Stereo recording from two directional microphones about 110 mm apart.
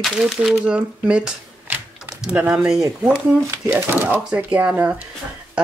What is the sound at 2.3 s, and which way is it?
Speech, 15° right (ahead or behind).